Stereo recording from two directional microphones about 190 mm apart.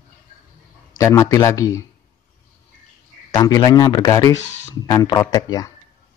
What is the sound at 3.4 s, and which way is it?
Speech, 20° left (ahead or behind).